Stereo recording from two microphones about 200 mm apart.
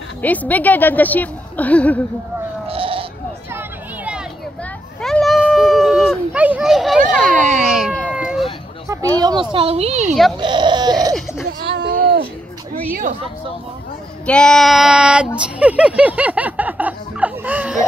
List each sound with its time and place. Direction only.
0.2 s a woman's voice: 10° left (ahead or behind)
2.7 s goat: 25° right (ahead or behind)
3.5 s a sound: 5° right (ahead or behind)
5.0 s cat: centre (ahead or behind)
7.2 s speech: 40° right (ahead or behind)
7.6 s a sound: centre (ahead or behind)
8.1 s cat: 5° right (ahead or behind)
8.8 s speech: 15° right (ahead or behind); by 10.1 s 35° right (ahead or behind)
10.4 s sheep: 20° right (ahead or behind)
11.6 s a sound: 60° right (ahead or behind)
14.2 s child singing: 5° left (ahead or behind)
15.4 s a sound: 5° right (ahead or behind)